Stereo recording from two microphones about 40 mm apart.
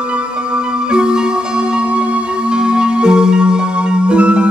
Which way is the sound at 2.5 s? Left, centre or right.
Right.